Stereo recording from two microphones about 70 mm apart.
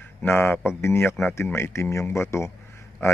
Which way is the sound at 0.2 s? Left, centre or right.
Left.